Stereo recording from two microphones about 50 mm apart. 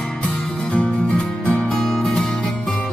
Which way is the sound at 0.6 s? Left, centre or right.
Left.